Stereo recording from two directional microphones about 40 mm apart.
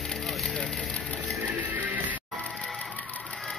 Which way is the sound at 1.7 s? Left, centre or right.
Right.